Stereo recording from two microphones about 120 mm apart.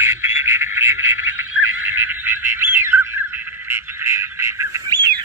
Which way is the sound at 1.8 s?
15° right (ahead or behind).